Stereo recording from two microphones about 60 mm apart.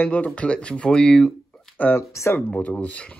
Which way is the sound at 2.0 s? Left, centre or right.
Left.